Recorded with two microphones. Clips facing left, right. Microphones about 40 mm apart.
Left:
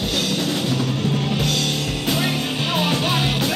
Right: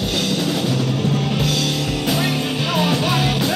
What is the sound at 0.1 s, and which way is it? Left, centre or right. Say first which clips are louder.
Music: right 2 dB; centre.